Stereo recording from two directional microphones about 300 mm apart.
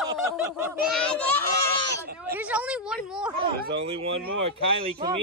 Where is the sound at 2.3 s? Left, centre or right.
Centre.